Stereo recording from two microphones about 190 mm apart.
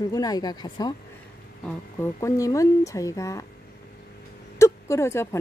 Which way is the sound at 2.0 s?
15° left (ahead or behind).